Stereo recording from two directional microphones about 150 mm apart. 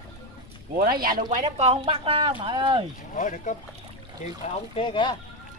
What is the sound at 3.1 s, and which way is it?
Speech, 55° left (ahead or behind).